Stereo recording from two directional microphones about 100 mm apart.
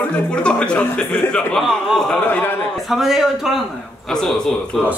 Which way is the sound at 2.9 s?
5° right (ahead or behind).